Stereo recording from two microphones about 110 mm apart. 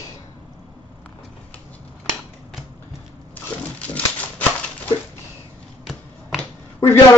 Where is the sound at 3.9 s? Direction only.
15° left (ahead or behind).